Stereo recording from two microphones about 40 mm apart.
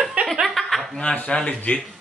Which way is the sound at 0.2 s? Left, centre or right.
Right.